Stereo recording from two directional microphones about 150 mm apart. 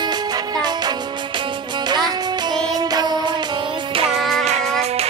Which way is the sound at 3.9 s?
40° right (ahead or behind).